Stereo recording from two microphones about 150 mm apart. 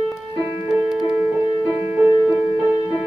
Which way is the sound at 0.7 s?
15° right (ahead or behind).